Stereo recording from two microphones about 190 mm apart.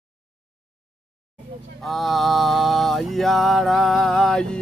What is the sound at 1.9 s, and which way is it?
Mantra, centre (ahead or behind).